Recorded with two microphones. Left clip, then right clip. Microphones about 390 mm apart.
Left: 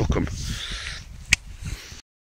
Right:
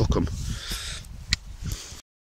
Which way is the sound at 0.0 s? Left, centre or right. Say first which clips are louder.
Even; centre.